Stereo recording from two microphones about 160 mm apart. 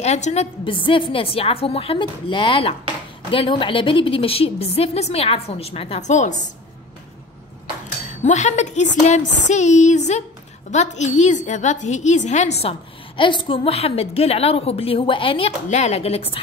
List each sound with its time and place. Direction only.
0.0 s a woman's voice: 45° left (ahead or behind)
8.1 s a woman's voice: 50° left (ahead or behind)
13.2 s a woman's voice: 30° left (ahead or behind)